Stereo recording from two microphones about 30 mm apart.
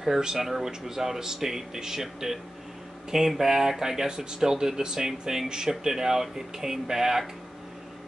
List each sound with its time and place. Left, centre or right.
0.2 s speech: centre
4.1 s speech: right